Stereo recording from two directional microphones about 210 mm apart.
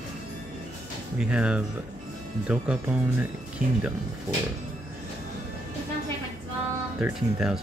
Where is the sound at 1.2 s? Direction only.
5° right (ahead or behind).